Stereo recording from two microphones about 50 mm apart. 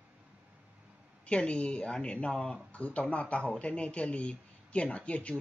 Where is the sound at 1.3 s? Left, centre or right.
Left.